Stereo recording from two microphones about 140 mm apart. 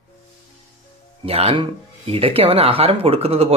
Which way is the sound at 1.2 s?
45° right (ahead or behind).